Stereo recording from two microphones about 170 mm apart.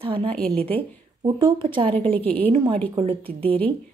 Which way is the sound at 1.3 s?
30° right (ahead or behind).